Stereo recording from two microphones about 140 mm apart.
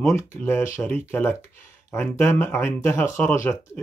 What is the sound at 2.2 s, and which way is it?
Speech, 15° left (ahead or behind).